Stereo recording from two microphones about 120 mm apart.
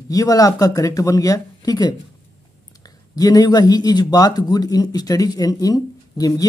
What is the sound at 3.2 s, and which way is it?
A man's voice, 30° left (ahead or behind).